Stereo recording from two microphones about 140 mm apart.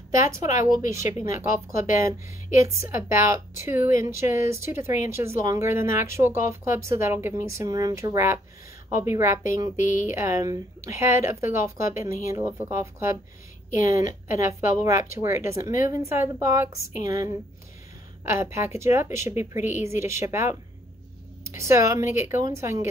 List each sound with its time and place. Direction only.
0.4 s speech: 65° left (ahead or behind)
0.7 s a woman's voice: 20° right (ahead or behind)
14.2 s a woman's voice: 20° right (ahead or behind)